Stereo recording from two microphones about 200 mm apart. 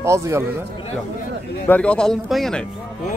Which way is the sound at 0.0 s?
15° right (ahead or behind).